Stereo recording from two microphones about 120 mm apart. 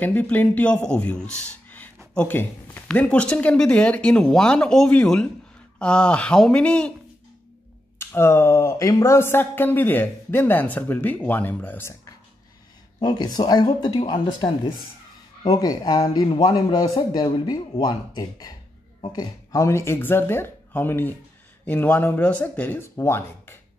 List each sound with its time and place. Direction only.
0.0 s speech: 15° left (ahead or behind)
8.0 s speech: 20° left (ahead or behind)
13.0 s a man's voice: 35° left (ahead or behind)
15.5 s a man's voice: 30° left (ahead or behind)